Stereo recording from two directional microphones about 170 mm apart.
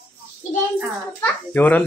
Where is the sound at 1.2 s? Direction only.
10° left (ahead or behind).